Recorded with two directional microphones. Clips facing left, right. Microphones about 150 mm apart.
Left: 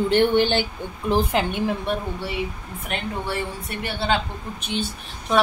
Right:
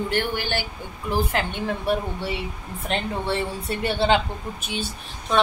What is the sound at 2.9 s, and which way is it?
A woman's voice, 25° right (ahead or behind).